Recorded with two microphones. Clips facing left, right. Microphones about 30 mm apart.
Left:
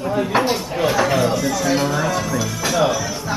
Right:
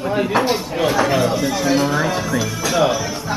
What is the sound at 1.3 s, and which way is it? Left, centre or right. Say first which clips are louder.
Speech: right 1 dB; centre.